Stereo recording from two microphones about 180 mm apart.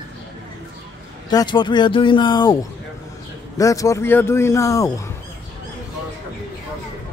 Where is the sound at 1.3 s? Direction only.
20° left (ahead or behind).